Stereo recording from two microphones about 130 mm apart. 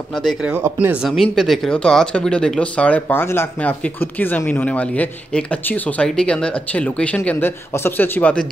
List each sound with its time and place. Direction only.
0.1 s speech: centre (ahead or behind)
0.5 s speech: 20° right (ahead or behind)
1.0 s speech: centre (ahead or behind)